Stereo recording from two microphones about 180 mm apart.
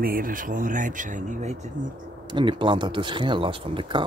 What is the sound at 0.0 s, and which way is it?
Speech, 50° right (ahead or behind).